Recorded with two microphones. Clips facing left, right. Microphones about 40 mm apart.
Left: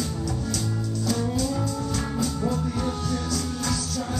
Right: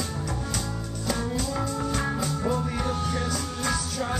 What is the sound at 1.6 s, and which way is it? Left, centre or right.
Music, right.